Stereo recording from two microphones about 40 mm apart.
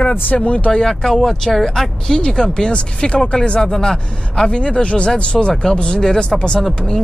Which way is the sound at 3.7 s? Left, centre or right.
Centre.